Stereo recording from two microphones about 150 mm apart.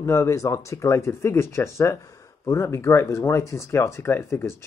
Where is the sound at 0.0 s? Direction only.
20° left (ahead or behind).